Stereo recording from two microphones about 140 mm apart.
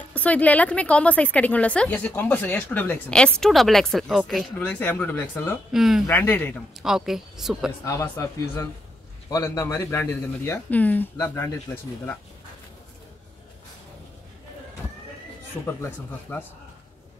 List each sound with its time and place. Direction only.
0.1 s speech: 10° left (ahead or behind)
4.6 s speech: 10° left (ahead or behind)
5.7 s speech: centre (ahead or behind)
6.0 s speech: 15° left (ahead or behind)
6.8 s speech: 5° right (ahead or behind)
7.8 s speech: 20° left (ahead or behind)
15.6 s speech: 15° left (ahead or behind)